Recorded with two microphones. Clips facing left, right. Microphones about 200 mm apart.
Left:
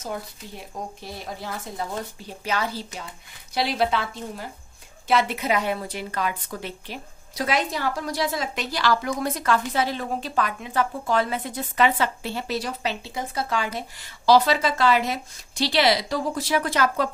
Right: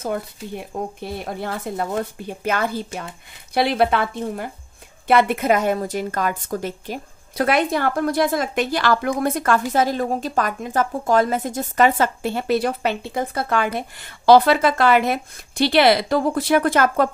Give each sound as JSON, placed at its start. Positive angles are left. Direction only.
{"t": 0.0, "sound": "a woman's voice", "side_deg": -55}